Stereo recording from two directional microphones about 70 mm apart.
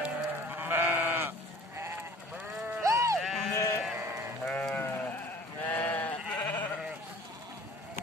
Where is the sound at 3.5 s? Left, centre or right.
Left.